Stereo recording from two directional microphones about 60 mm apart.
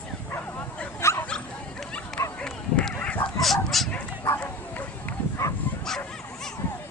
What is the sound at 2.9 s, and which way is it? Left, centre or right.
Dog, left.